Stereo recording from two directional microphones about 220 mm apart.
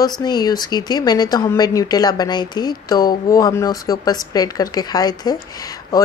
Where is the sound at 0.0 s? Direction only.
20° left (ahead or behind).